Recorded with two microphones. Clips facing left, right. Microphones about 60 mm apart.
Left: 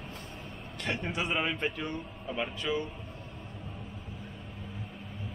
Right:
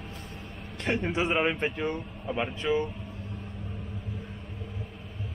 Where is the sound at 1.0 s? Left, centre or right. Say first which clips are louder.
Right 5 dB; right.